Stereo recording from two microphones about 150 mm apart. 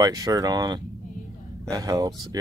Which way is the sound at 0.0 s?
25° right (ahead or behind).